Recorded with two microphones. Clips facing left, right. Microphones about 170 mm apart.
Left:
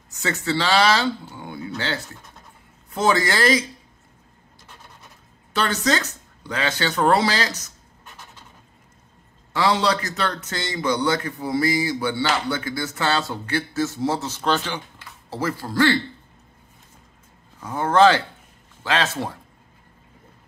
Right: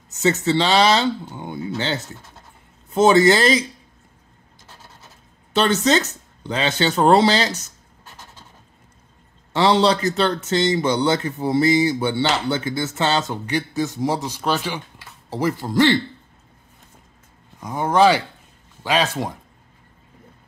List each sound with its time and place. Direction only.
0.1 s speech: 20° right (ahead or behind)
5.5 s speech: 25° right (ahead or behind)
9.5 s speech: 25° right (ahead or behind)
17.6 s speech: 15° right (ahead or behind)